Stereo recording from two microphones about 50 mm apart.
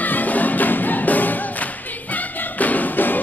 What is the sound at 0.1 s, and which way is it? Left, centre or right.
Music, left.